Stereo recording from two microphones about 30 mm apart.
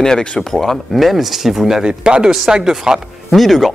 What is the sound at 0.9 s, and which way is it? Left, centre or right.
Speech, centre.